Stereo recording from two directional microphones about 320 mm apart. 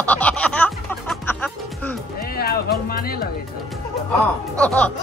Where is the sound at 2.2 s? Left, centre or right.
Left.